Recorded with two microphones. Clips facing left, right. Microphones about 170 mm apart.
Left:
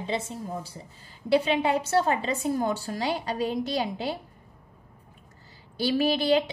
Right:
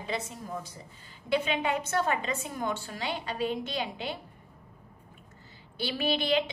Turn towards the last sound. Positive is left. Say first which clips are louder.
# left 5 dB
turn(degrees=40)  # may be behind; listen again after turning